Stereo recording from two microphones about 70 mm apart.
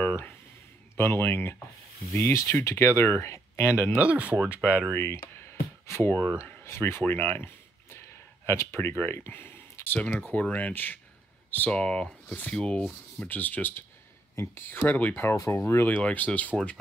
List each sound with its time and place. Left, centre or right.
0.0 s a sound: left
0.9 s speech: left
4.0 s speech: centre
4.9 s a sound: left
6.3 s speech: left
9.9 s speech: centre
13.3 s speech: left
15.3 s speech: left
15.6 s speech: left
16.0 s speech: centre